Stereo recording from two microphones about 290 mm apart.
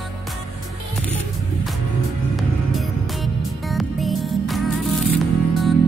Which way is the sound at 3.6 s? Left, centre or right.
Centre.